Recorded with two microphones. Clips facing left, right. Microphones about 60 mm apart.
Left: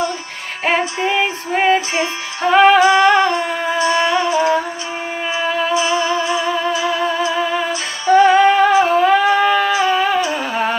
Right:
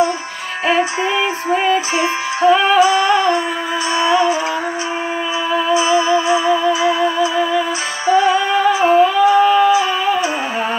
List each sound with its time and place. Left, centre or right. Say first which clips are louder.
0.7 s music: right 1 dB; left
4.3 s music: left 3 dB; right
6.1 s music: right 4 dB; centre
8.1 s music: left 4 dB; left
9.0 s a sound: right 1 dB; left